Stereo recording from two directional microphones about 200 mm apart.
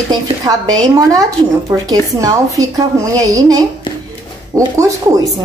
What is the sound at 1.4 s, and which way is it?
A woman's voice, 25° right (ahead or behind).